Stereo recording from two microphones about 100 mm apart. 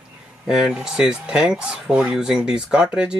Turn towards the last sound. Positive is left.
turn(degrees=-10)  # may be behind; listen again after turning